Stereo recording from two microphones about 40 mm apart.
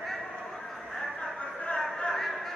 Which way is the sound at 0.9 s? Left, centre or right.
Centre.